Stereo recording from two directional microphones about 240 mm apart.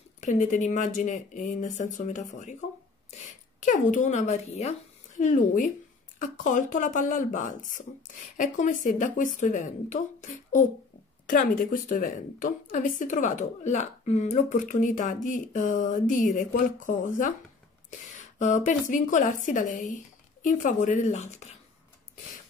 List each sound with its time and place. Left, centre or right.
0.2 s a woman's voice: left
3.6 s a woman's voice: left